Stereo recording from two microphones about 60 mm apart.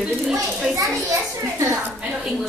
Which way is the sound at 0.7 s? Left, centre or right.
Right.